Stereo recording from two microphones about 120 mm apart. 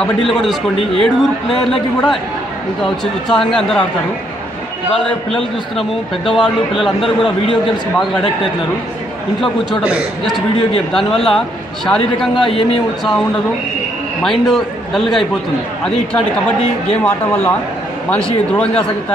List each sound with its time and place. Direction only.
0.0 s a man's voice: 5° left (ahead or behind)
4.9 s a man's voice: centre (ahead or behind)
10.9 s a man's voice: 5° left (ahead or behind)
12.4 s speech: 50° left (ahead or behind)
14.2 s a man's voice: centre (ahead or behind)
16.9 s a man's voice: 15° left (ahead or behind)